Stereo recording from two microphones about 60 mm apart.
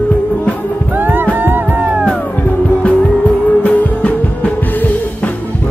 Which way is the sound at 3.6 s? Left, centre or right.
Left.